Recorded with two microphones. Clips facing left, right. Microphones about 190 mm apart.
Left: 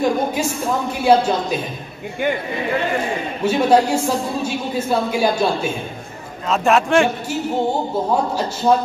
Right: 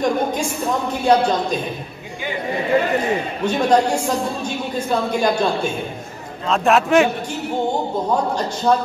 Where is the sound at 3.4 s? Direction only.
5° left (ahead or behind).